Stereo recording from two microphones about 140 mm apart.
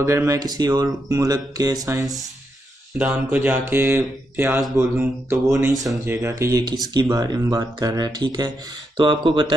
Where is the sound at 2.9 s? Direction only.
10° right (ahead or behind); by 9.5 s 35° right (ahead or behind).